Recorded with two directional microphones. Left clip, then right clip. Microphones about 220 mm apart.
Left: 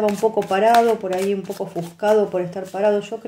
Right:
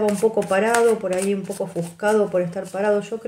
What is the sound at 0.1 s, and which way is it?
Speech, 15° left (ahead or behind).